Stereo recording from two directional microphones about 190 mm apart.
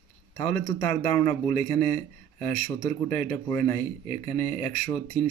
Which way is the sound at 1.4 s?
15° left (ahead or behind).